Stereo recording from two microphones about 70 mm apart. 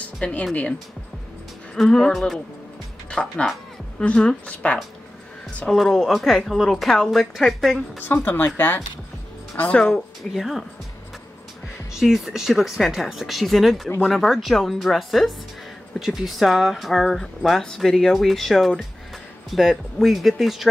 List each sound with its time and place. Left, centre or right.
0.0 s a sound: centre
1.9 s a woman's voice: centre
5.7 s speech: centre
8.0 s speech: left
10.3 s speech: centre
11.9 s speech: centre